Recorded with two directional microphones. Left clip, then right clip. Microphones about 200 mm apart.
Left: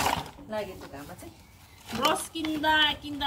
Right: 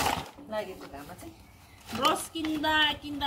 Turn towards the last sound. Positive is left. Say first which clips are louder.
# left 2 dB
turn(degrees=20)  # may be behind; listen again after turning